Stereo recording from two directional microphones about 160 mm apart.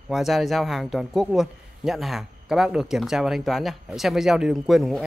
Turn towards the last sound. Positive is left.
turn(degrees=0)  # may be behind; listen again after turning